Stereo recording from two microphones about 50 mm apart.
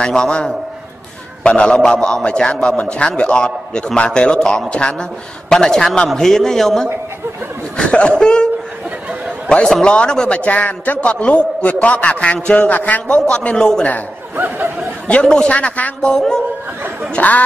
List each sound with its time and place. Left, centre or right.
0.0 s a man's voice: centre
7.7 s snicker: centre
8.2 s a man's voice: centre
9.7 s a man's voice: centre
12.6 s a man's voice: left
14.3 s snicker: right
15.0 s a man's voice: left
16.0 s a man's voice: centre
17.1 s speech: left